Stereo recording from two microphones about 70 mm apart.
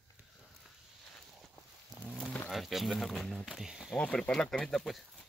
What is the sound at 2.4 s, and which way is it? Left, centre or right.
Speech, centre.